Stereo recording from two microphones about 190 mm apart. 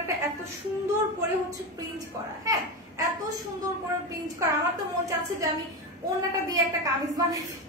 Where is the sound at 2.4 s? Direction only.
15° right (ahead or behind).